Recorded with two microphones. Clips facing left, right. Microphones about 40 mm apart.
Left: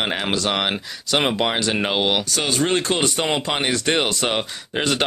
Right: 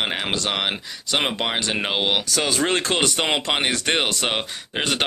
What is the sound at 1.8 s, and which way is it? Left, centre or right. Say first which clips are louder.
Speech: left 3 dB; centre.